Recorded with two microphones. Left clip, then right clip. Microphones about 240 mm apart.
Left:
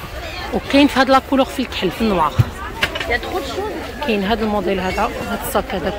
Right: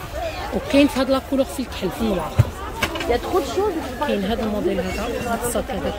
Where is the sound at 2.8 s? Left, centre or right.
Right.